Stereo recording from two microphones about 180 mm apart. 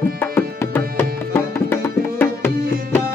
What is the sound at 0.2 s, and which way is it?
Music, 15° left (ahead or behind).